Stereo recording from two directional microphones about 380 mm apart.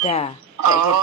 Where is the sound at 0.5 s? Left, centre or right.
Right.